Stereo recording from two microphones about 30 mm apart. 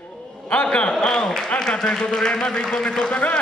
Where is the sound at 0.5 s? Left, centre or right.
Left.